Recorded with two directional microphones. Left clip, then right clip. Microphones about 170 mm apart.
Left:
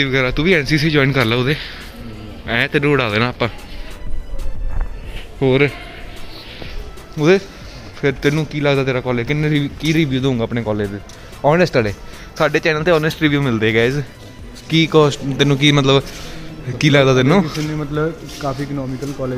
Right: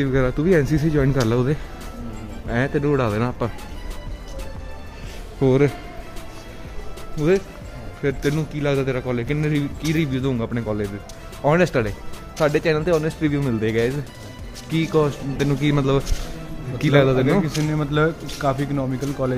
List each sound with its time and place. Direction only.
0.0 s speech: 5° right (ahead or behind)
1.3 s speech: 15° right (ahead or behind)
2.4 s speech: centre (ahead or behind)
5.4 s speech: 10° right (ahead or behind)
7.2 s speech: 30° left (ahead or behind)
9.4 s speech: 35° left (ahead or behind)
14.7 s speech: 40° left (ahead or behind)
17.5 s speech: 45° right (ahead or behind)
17.9 s speech: 25° right (ahead or behind)